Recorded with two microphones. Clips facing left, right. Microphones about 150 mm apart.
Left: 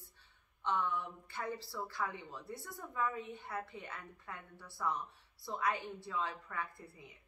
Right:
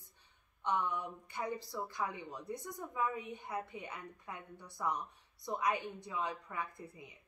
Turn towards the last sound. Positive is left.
turn(degrees=-20)  # may be behind; listen again after turning